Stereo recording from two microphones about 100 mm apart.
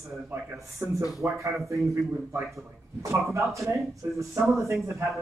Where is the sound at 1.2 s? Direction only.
20° right (ahead or behind).